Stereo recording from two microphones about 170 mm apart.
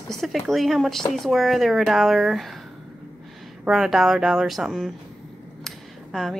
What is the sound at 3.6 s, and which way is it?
Speech, centre (ahead or behind).